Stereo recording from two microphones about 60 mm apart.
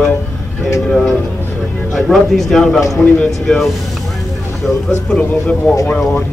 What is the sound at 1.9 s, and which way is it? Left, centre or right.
A man's voice, centre.